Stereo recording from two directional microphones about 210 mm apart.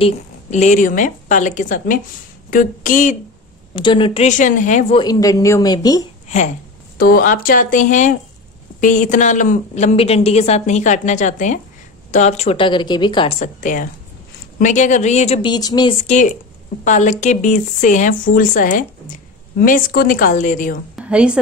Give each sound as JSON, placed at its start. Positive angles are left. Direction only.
{"t": 0.0, "sound": "a woman's voice", "side_deg": 35}
{"t": 3.7, "sound": "a woman's voice", "side_deg": 25}
{"t": 4.9, "sound": "a woman's voice", "side_deg": 20}
{"t": 6.2, "sound": "a woman's voice", "side_deg": 35}
{"t": 13.6, "sound": "a woman's voice", "side_deg": 40}
{"t": 16.8, "sound": "a woman's voice", "side_deg": 35}
{"t": 20.9, "sound": "a woman's voice", "side_deg": -5}